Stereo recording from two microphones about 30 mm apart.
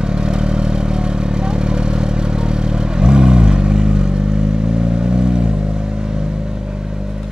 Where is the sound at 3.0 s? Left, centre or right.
Right.